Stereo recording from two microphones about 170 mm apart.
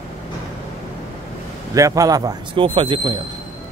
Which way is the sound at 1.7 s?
20° right (ahead or behind).